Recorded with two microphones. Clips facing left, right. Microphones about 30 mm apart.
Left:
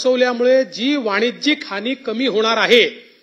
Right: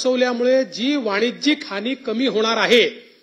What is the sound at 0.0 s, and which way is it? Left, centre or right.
A man's voice, centre.